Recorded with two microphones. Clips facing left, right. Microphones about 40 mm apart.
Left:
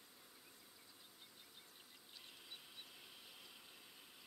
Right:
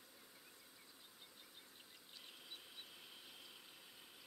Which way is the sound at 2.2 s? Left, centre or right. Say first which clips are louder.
Right 1 dB; centre.